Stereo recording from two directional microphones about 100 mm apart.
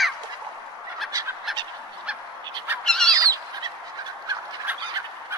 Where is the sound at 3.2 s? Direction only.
35° right (ahead or behind).